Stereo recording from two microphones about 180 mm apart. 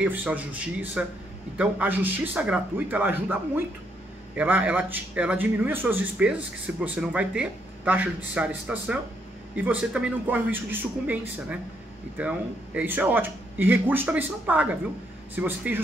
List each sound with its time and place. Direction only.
0.0 s a man's voice: 10° right (ahead or behind)
12.2 s a man's voice: 5° right (ahead or behind)